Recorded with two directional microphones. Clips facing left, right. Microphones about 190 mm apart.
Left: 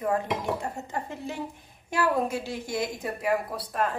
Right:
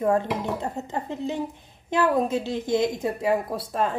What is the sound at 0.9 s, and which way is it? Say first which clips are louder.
A woman's voice: right 5 dB; 20° right (ahead or behind).